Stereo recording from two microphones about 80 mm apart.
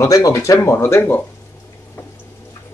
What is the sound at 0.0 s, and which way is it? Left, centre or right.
Speech, left.